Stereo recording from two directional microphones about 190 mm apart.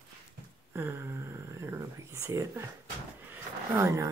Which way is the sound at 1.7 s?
15° right (ahead or behind).